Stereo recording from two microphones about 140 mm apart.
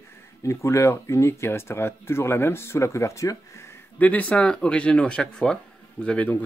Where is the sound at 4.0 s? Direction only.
10° left (ahead or behind).